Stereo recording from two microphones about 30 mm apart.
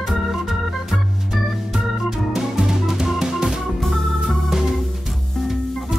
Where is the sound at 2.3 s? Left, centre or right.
Centre.